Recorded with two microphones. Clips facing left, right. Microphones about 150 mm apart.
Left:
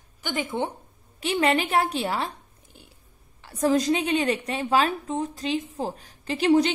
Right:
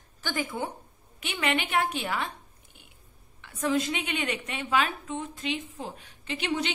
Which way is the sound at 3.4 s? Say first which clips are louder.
Left 5 dB; 35° left (ahead or behind).